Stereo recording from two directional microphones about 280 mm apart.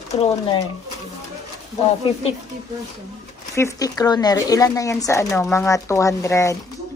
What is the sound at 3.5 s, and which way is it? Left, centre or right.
Speech, centre.